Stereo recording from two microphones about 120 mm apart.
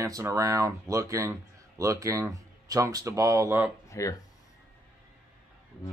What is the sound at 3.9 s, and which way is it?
Speech, 25° left (ahead or behind).